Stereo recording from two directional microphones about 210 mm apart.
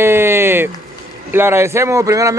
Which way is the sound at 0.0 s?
10° right (ahead or behind).